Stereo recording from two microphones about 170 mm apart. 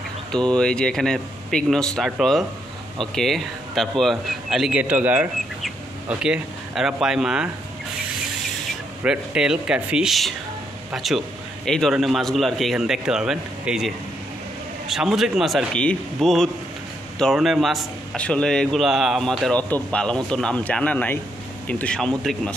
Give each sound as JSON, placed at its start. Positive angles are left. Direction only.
{"t": 0.3, "sound": "a man's voice", "side_deg": 5}
{"t": 9.0, "sound": "a man's voice", "side_deg": -5}